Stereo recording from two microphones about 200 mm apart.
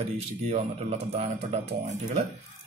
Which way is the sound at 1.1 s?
30° right (ahead or behind).